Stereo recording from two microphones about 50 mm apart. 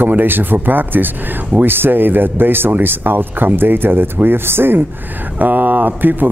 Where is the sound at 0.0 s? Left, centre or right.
Right.